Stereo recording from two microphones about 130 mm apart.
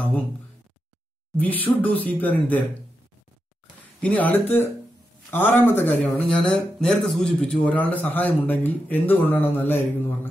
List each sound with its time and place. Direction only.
1.3 s speech: 15° left (ahead or behind)
4.0 s speech: 10° left (ahead or behind)